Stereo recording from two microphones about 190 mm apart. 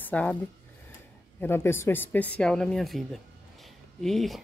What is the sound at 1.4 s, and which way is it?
Speech, 10° left (ahead or behind).